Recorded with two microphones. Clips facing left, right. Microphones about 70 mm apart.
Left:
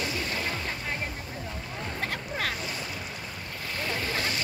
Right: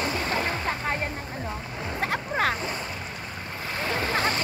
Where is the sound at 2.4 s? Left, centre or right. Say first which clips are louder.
Right 7 dB; right.